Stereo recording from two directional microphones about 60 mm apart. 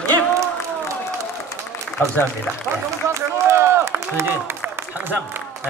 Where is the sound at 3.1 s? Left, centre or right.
Right.